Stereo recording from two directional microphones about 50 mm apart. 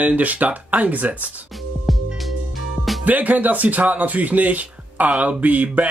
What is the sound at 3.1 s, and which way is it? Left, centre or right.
Speech, right.